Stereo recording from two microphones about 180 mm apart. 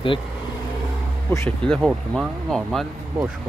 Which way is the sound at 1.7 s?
Centre (ahead or behind).